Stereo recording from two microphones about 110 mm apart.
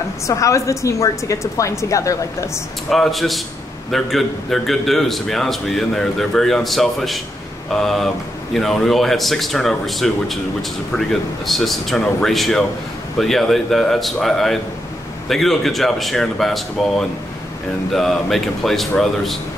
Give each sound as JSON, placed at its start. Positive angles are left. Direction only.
{"t": 0.3, "sound": "a woman's voice", "side_deg": 30}
{"t": 2.9, "sound": "a man's voice", "side_deg": 0}